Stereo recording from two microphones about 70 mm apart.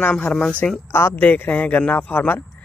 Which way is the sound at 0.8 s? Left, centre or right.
Left.